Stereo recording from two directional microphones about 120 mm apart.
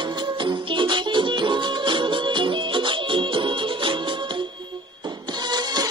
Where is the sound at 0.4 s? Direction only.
45° right (ahead or behind).